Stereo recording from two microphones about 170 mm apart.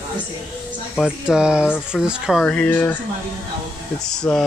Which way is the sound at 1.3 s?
5° right (ahead or behind).